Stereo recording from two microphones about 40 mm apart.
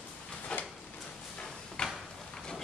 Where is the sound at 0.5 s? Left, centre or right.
Left.